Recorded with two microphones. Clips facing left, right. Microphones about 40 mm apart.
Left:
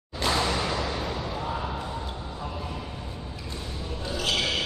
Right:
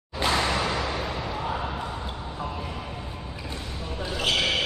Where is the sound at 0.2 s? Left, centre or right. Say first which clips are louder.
Right 1 dB; centre.